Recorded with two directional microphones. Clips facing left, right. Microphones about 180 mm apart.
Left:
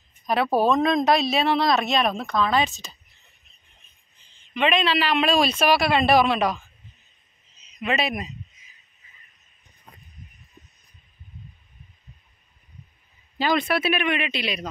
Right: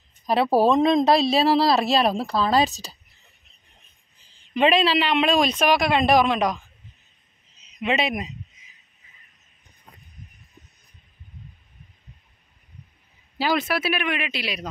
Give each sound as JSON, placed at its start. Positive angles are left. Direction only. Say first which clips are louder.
{"t": 0.3, "sound": "a woman's voice", "louder": "right 2 dB", "side_deg": -30}
{"t": 4.3, "sound": "speech", "louder": "right 3 dB", "side_deg": -35}
{"t": 7.8, "sound": "speech", "louder": "right 2 dB", "side_deg": -20}
{"t": 13.4, "sound": "speech", "louder": "left 1 dB", "side_deg": -5}